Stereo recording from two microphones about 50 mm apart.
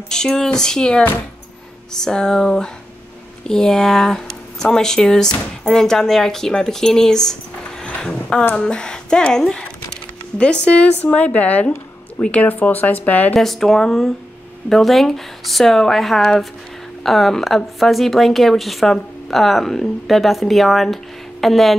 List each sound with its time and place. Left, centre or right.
0.1 s speech: centre
12.4 s speech: left
13.3 s a woman's voice: centre